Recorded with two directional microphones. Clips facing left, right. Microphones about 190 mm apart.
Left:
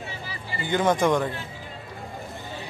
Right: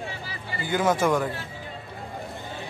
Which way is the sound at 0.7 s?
5° right (ahead or behind).